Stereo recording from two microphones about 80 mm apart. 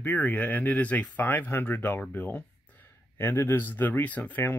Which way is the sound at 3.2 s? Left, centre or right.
Left.